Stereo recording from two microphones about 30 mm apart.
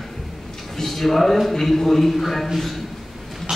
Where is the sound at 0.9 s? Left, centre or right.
Centre.